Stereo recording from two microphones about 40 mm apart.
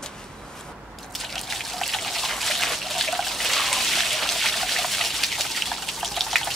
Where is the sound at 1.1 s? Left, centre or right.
Centre.